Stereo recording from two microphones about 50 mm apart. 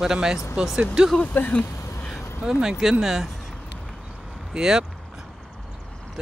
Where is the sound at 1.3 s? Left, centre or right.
Left.